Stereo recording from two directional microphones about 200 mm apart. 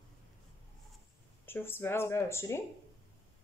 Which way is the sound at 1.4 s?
10° left (ahead or behind).